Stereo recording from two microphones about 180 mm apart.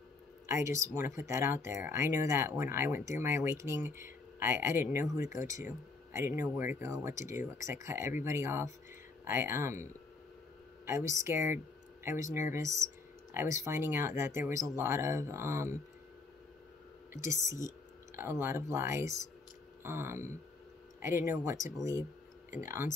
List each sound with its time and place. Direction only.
0.5 s speech: 15° right (ahead or behind)
10.9 s speech: 15° right (ahead or behind)
12.8 s a sound: 15° right (ahead or behind)
13.7 s speech: 15° right (ahead or behind)
17.1 s speech: 15° right (ahead or behind)